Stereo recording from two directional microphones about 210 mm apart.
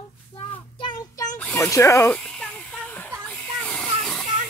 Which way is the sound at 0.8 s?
20° left (ahead or behind).